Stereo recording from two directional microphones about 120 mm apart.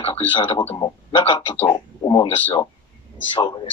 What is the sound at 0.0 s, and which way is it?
A man's voice, 45° left (ahead or behind).